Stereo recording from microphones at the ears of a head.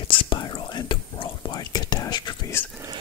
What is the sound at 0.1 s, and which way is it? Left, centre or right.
Whispering, left.